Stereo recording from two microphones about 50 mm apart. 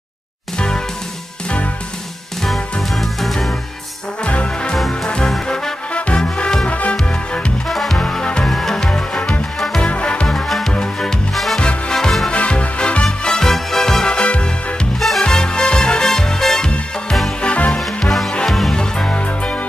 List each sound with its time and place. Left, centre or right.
0.6 s music: centre
2.4 s music: centre
4.2 s music: left
7.6 s music: centre
8.0 s music: centre
8.5 s music: centre; by 10.2 s left
10.2 s music: centre
12.3 s music: left
15.0 s music: centre
15.2 s music: centre
17.4 s music: left
17.7 s music: centre; by 19.6 s left